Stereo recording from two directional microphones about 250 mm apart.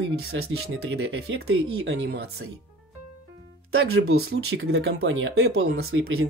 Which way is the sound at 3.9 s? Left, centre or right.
Right.